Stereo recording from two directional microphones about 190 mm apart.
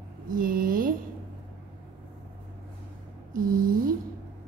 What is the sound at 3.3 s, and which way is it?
Speech, 45° right (ahead or behind).